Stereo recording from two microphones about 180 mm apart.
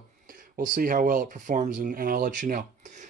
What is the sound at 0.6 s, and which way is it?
Speech, 50° right (ahead or behind).